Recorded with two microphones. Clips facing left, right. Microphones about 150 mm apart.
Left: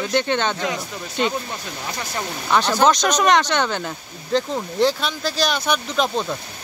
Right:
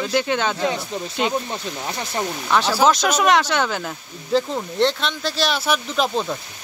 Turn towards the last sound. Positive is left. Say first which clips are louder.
# even
turn(degrees=-5)  # may be behind; listen again after turning